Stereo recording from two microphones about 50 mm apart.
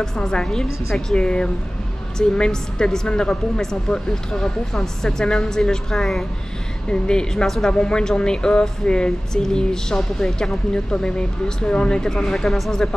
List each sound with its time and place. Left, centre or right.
0.0 s speech: centre
1.1 s speech: centre